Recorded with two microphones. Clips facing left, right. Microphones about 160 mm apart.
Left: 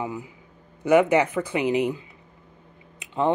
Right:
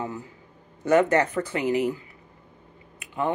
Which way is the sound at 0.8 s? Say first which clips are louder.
Left 2 dB; 10° left (ahead or behind).